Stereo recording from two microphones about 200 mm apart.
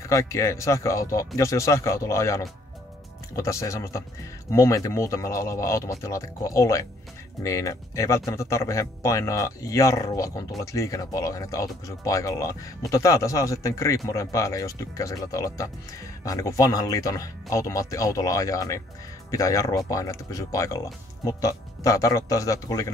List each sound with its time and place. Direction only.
0.0 s speech: 15° left (ahead or behind)